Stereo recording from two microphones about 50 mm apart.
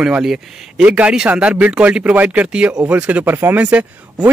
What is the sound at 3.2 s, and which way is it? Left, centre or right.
Speech, right.